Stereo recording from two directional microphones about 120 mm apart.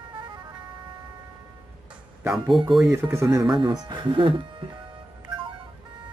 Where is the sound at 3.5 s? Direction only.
35° right (ahead or behind).